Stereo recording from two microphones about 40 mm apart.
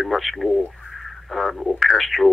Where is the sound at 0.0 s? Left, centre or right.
Centre.